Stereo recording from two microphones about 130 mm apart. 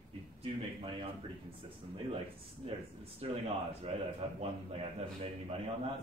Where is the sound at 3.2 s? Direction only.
45° right (ahead or behind).